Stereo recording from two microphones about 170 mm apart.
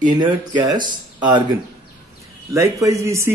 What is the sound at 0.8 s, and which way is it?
Speech, 25° right (ahead or behind).